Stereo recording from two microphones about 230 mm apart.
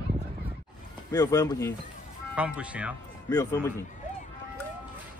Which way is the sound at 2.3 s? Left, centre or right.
Centre.